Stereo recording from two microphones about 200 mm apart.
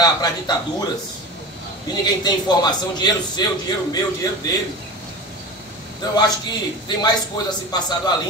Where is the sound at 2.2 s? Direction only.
20° left (ahead or behind).